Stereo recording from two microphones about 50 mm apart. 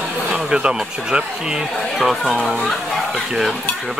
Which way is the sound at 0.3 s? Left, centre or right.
Centre.